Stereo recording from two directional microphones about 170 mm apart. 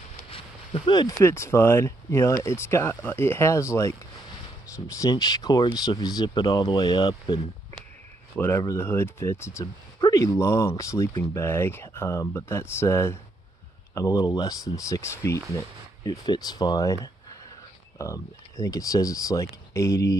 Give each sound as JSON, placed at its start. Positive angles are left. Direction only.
{"t": 0.3, "sound": "a sound", "side_deg": 30}
{"t": 1.2, "sound": "speech", "side_deg": 15}
{"t": 8.4, "sound": "speech", "side_deg": 15}